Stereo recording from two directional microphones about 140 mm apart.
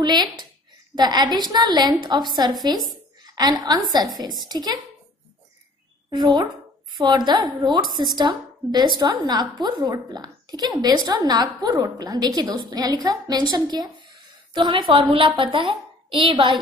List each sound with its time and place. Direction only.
0.0 s a woman's voice: 30° right (ahead or behind)
6.0 s a woman's voice: 30° right (ahead or behind)